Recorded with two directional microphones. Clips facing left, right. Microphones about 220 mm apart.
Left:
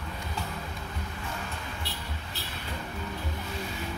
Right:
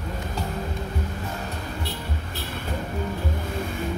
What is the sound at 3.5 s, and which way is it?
Music, 50° right (ahead or behind).